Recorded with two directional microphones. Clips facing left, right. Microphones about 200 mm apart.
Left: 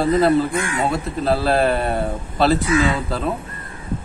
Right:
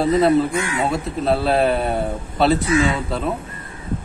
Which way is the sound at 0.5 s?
50° left (ahead or behind).